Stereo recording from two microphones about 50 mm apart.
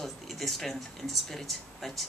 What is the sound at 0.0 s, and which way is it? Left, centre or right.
A woman's voice, centre.